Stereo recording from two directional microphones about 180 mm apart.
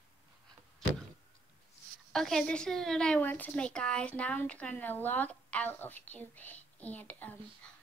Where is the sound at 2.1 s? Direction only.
Centre (ahead or behind).